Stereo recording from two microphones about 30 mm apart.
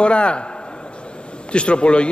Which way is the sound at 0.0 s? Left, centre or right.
Left.